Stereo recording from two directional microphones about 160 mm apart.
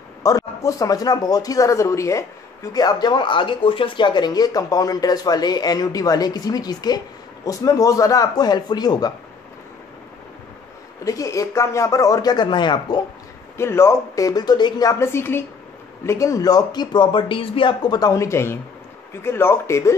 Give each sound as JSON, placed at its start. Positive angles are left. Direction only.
{"t": 0.2, "sound": "a man's voice", "side_deg": 20}
{"t": 11.1, "sound": "a man's voice", "side_deg": 20}
{"t": 13.6, "sound": "a woman's voice", "side_deg": 15}